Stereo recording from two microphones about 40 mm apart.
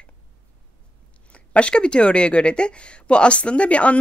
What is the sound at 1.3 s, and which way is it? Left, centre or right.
Speech, left.